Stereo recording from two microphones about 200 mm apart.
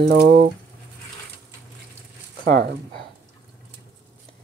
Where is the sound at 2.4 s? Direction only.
50° right (ahead or behind).